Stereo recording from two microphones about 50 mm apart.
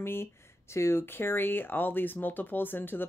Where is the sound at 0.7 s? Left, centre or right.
Left.